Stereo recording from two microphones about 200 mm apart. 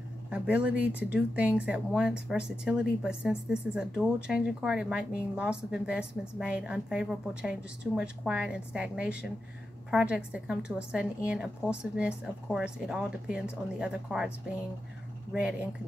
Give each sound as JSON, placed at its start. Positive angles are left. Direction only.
{"t": 0.3, "sound": "speech", "side_deg": -5}
{"t": 15.3, "sound": "speech", "side_deg": -5}